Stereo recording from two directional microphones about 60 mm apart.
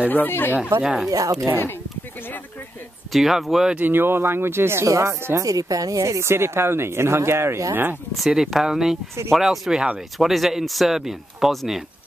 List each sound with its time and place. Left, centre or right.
0.1 s speech: left
0.8 s speech: centre
1.1 s speech: right
3.1 s speech: centre
3.7 s speech: right
4.8 s speech: right
7.7 s speech: right
8.3 s speech: centre